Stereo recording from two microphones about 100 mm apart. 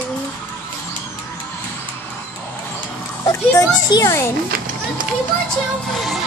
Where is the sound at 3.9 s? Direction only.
40° left (ahead or behind).